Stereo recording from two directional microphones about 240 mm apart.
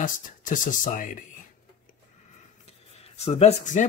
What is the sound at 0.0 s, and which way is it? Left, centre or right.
Speech, left.